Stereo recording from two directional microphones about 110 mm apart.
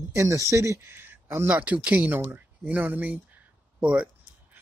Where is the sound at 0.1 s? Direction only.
30° right (ahead or behind).